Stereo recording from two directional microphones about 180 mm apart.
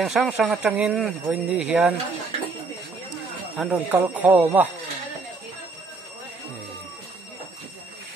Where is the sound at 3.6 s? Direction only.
5° right (ahead or behind).